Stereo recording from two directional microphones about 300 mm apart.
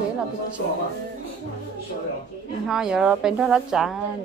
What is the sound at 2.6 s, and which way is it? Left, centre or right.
A woman's voice, centre.